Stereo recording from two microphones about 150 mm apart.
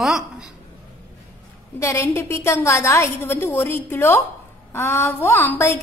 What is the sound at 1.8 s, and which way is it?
A woman's voice, 20° left (ahead or behind).